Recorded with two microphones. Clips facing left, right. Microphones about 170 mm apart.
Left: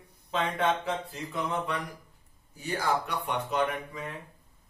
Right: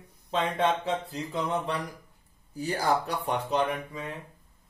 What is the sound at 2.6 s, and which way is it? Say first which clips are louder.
Speech: right 3 dB; 35° right (ahead or behind).